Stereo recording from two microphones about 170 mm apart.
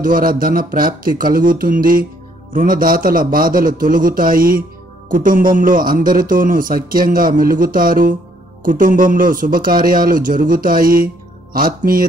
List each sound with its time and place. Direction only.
0.0 s speech: 55° right (ahead or behind)